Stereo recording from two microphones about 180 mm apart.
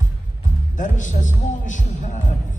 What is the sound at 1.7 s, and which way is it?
Speech, 45° left (ahead or behind).